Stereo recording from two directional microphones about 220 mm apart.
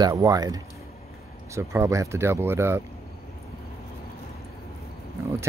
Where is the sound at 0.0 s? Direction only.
15° right (ahead or behind).